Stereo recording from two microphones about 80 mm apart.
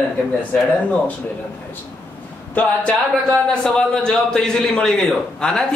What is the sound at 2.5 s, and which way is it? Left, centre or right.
A man's voice, centre.